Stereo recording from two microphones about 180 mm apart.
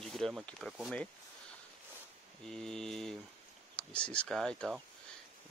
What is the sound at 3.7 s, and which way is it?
Speech, 5° left (ahead or behind).